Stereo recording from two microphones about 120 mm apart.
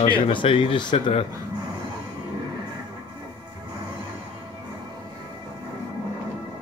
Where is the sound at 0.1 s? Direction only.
45° left (ahead or behind).